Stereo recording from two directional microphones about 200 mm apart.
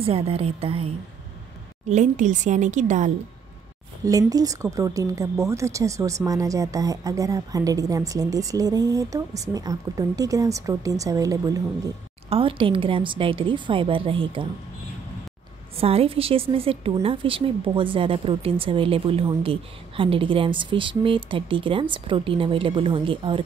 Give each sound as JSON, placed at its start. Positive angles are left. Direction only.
{"t": 0.0, "sound": "a woman's voice", "side_deg": -30}
{"t": 4.0, "sound": "a woman's voice", "side_deg": -15}
{"t": 15.8, "sound": "a woman's voice", "side_deg": -30}